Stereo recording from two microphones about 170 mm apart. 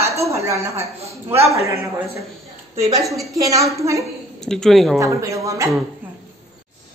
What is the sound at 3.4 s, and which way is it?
Speech, 20° right (ahead or behind).